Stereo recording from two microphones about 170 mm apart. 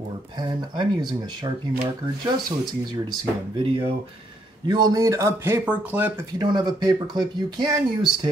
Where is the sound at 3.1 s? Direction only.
30° right (ahead or behind); by 6.2 s 10° right (ahead or behind).